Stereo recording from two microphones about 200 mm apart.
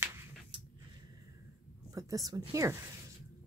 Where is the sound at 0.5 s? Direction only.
25° right (ahead or behind).